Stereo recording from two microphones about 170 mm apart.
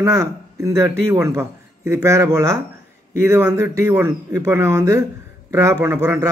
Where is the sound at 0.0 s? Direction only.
15° right (ahead or behind).